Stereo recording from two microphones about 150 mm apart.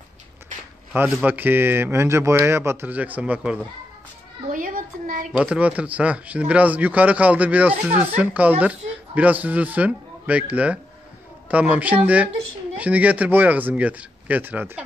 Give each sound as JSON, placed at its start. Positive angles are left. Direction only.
{"t": 0.9, "sound": "a man's voice", "side_deg": -10}
{"t": 4.5, "sound": "a sound", "side_deg": -65}
{"t": 5.3, "sound": "a man's voice", "side_deg": -10}